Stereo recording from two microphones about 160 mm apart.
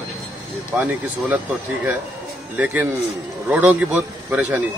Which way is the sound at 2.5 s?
10° right (ahead or behind).